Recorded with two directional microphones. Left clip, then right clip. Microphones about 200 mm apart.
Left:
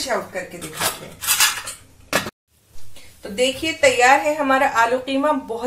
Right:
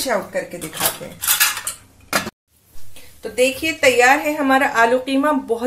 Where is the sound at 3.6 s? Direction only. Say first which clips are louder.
Even; 30° right (ahead or behind).